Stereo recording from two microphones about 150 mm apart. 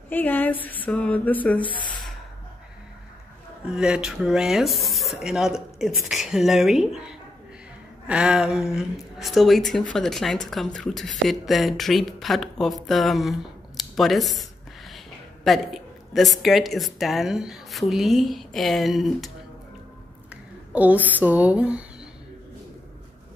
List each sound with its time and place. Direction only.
0.1 s speech: 10° left (ahead or behind)
1.8 s sigh: 30° left (ahead or behind)
3.7 s speech: 5° right (ahead or behind)
20.7 s speech: 10° right (ahead or behind)